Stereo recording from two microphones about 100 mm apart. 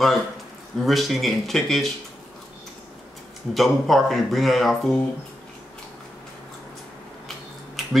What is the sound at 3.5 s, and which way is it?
A man's voice, centre (ahead or behind).